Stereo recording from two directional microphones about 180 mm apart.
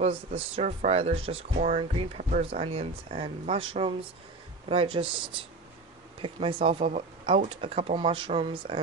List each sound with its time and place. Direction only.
0.0 s speech: 30° right (ahead or behind)